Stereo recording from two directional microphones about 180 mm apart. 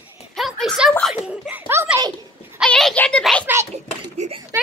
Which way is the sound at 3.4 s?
15° right (ahead or behind).